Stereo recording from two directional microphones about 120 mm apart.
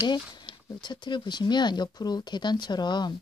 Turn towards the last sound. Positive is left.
turn(degrees=35)  # may be behind; listen again after turning